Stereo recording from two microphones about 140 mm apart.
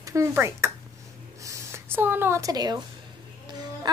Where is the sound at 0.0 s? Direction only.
20° right (ahead or behind).